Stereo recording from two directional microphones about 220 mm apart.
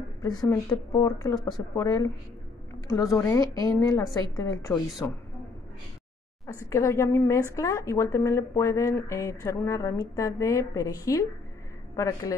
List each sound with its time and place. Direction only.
0.2 s speech: 15° left (ahead or behind)
6.7 s speech: 10° left (ahead or behind)